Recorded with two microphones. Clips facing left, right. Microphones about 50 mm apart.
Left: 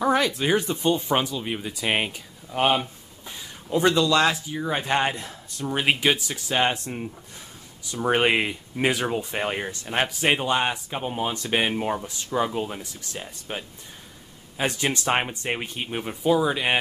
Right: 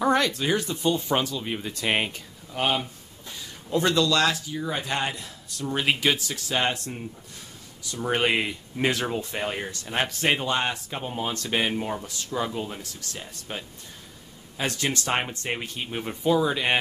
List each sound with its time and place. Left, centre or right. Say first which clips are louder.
0.0 s speech: left 1 dB; centre; by 1.1 s left
1.1 s speech: left 1 dB; centre
2.5 s speech: left 4 dB; centre
5.7 s speech: left 2 dB; centre
8.1 s speech: left 3 dB; centre
16.0 s speech: left 1 dB; centre